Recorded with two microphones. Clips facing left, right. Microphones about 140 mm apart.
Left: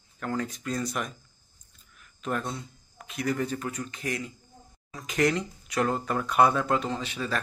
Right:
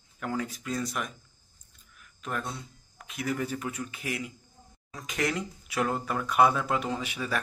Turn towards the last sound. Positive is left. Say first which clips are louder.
# left 1 dB
turn(degrees=-10)  # may be behind; listen again after turning